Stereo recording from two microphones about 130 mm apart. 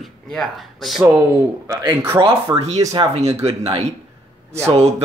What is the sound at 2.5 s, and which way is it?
Speech, 20° right (ahead or behind).